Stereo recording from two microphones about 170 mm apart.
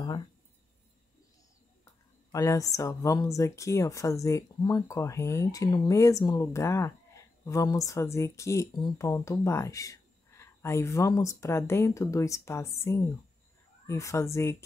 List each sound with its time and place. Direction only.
2.3 s speech: 20° left (ahead or behind)